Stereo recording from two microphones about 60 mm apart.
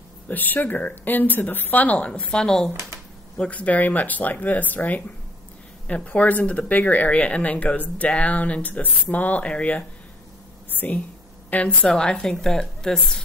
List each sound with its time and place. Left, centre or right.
0.3 s speech: left; by 2.7 s centre
3.3 s speech: left
10.7 s a sound: left
11.5 s speech: left
11.9 s a woman's voice: centre